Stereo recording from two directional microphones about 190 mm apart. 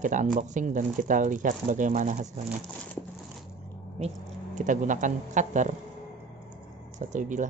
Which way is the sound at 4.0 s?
35° right (ahead or behind).